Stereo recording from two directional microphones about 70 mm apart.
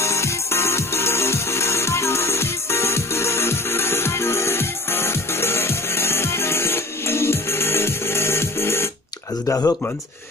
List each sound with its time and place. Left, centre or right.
0.0 s music: left
9.5 s speech: left